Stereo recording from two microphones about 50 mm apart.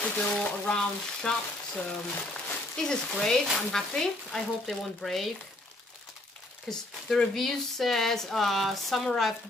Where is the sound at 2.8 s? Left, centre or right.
Centre.